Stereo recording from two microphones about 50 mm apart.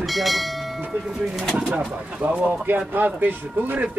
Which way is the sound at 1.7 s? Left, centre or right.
Right.